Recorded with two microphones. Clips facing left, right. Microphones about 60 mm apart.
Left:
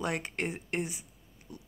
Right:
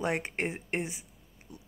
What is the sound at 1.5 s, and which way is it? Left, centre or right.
Pig, right.